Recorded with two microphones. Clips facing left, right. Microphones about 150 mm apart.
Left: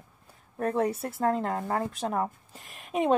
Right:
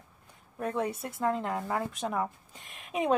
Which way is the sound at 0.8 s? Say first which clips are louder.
Left 5 dB; centre (ahead or behind).